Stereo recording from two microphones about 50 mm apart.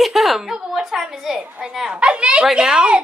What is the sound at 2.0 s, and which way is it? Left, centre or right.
Speech, right.